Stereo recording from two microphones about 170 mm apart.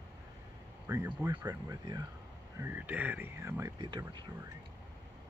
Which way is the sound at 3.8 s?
25° right (ahead or behind).